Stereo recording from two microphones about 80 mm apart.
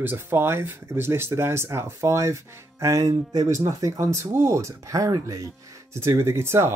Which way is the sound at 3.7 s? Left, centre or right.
Right.